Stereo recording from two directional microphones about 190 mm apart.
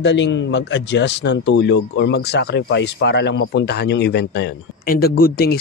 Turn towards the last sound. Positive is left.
turn(degrees=50)  # may be behind; listen again after turning